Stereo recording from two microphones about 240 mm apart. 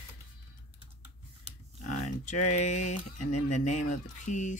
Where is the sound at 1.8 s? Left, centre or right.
Left.